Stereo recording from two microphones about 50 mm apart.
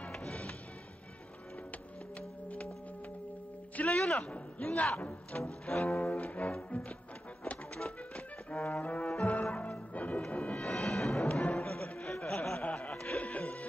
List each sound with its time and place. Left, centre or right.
0.1 s music: centre
2.1 s music: left
3.7 s a man's voice: left
5.7 s music: centre
5.9 s speech: left
7.8 s music: left
8.6 s speech: left
9.0 s music: centre
11.2 s music: left
13.2 s music: left